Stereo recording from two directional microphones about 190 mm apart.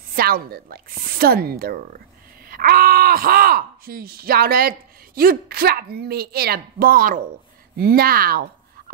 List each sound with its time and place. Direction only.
0.1 s speech: 50° right (ahead or behind)